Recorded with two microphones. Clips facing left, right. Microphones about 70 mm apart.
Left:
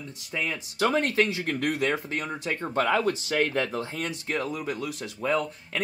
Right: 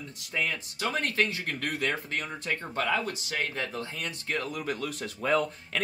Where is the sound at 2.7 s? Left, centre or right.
Left.